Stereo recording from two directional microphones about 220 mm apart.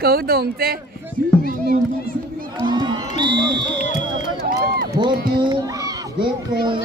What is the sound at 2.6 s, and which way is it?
Speech, 20° right (ahead or behind).